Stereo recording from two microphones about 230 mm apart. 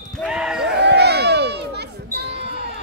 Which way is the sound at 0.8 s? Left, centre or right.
Right.